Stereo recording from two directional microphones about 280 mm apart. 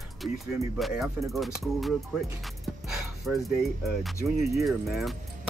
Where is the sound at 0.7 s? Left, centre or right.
Centre.